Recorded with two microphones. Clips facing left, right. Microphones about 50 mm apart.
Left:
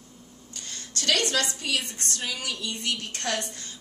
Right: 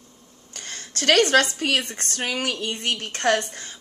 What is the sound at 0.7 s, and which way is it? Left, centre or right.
A woman's voice, right.